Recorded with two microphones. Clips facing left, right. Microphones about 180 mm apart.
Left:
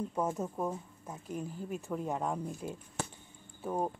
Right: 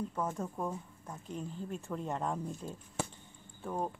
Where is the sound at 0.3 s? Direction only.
5° left (ahead or behind).